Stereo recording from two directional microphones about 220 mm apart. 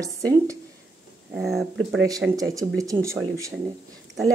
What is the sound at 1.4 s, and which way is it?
Speech, centre (ahead or behind).